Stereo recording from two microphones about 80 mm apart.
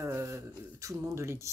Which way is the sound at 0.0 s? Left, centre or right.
Right.